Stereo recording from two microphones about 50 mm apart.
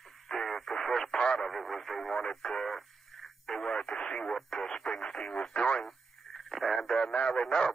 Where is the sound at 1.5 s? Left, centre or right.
Centre; by 5.9 s left.